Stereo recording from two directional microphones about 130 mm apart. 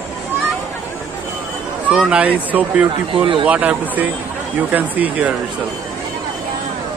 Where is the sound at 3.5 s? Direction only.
10° right (ahead or behind).